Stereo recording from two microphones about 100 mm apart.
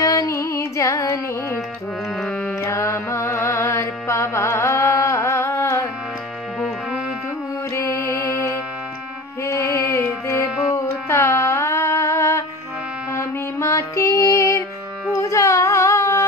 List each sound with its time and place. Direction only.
0.0 s music: 35° left (ahead or behind)
2.1 s music: 5° left (ahead or behind)
2.6 s music: 30° left (ahead or behind)
7.7 s music: 30° left (ahead or behind)
10.7 s carnatic music: 30° left (ahead or behind)
13.1 s music: 30° left (ahead or behind)
15.2 s a sound: 30° left (ahead or behind)